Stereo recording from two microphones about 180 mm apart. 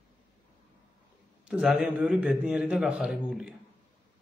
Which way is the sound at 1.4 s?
5° right (ahead or behind).